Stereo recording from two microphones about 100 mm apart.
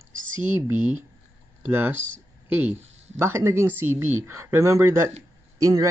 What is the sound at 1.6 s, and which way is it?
Speech, 20° right (ahead or behind).